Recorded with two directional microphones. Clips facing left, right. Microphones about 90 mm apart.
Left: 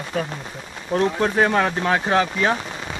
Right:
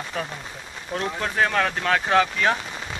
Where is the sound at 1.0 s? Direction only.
25° left (ahead or behind).